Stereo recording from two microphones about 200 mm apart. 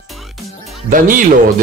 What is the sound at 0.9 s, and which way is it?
Speech, 40° right (ahead or behind).